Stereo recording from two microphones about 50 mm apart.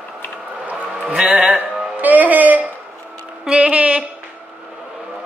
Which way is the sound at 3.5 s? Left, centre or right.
Right.